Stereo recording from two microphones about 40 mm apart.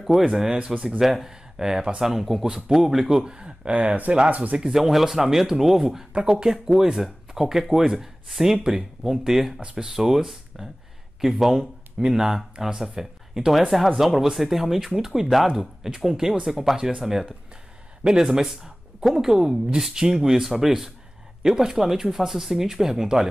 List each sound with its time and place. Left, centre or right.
0.0 s speech: centre
3.3 s speech: right
3.7 s speech: right
4.6 s speech: centre
9.6 s speech: centre
9.9 s speech: centre
16.7 s speech: centre